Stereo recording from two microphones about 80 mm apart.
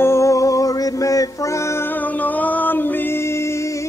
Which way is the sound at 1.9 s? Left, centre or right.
Left.